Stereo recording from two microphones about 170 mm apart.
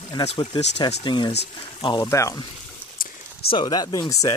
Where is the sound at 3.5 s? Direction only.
25° left (ahead or behind).